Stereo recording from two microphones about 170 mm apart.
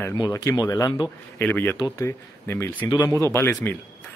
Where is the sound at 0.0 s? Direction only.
20° left (ahead or behind).